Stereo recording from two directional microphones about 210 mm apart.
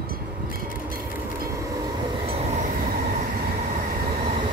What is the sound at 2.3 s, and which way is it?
Train, 30° right (ahead or behind).